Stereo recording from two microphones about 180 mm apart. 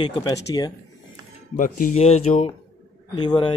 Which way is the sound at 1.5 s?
50° left (ahead or behind).